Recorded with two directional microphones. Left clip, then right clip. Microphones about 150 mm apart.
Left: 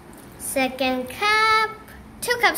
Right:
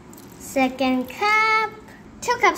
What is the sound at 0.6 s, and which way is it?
A child's voice, 20° right (ahead or behind).